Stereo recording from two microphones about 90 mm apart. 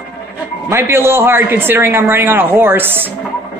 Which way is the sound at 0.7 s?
30° right (ahead or behind).